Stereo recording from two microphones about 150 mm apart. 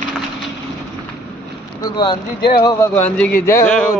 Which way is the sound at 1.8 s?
25° left (ahead or behind).